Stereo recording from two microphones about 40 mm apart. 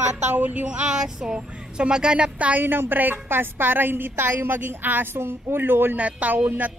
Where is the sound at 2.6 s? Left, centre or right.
Right.